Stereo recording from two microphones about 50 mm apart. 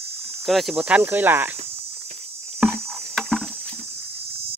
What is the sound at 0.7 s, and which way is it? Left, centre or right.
Speech, right.